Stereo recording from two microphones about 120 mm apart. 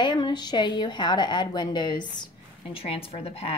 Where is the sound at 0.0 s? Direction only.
40° left (ahead or behind).